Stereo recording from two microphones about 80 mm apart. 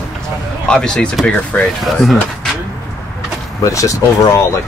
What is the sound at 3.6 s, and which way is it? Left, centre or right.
Speech, left.